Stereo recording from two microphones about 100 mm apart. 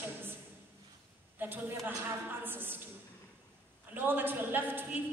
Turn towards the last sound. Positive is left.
turn(degrees=-20)  # may be behind; listen again after turning